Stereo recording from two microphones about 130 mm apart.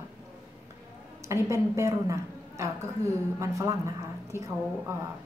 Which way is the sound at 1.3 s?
20° right (ahead or behind).